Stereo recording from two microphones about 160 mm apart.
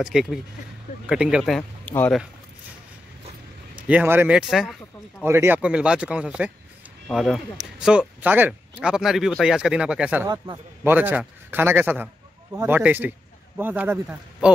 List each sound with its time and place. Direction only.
0.0 s speech: 5° right (ahead or behind)
3.8 s speech: 10° right (ahead or behind)
5.2 s speech: 15° right (ahead or behind)
10.2 s a man's voice: 25° right (ahead or behind)
10.8 s speech: 10° right (ahead or behind)